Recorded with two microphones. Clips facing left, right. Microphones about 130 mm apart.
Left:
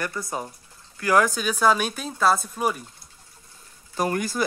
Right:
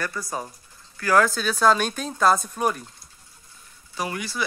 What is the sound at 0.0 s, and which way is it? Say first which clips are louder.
Speech: even; 20° left (ahead or behind).